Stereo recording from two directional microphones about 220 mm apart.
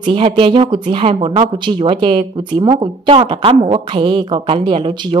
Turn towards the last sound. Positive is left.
turn(degrees=-20)  # may be behind; listen again after turning